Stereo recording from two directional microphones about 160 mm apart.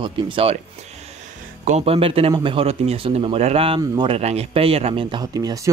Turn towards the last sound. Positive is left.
turn(degrees=-20)  # may be behind; listen again after turning